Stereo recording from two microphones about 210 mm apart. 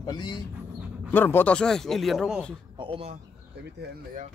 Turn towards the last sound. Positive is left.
turn(degrees=-25)  # may be behind; listen again after turning